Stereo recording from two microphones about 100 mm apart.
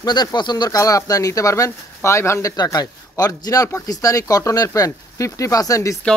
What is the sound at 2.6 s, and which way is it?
Speech, 40° left (ahead or behind).